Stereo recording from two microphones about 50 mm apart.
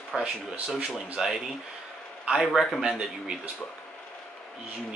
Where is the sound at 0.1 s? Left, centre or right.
Centre.